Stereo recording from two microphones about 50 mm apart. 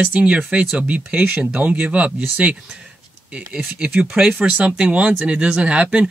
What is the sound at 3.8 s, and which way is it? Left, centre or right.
Speech, centre.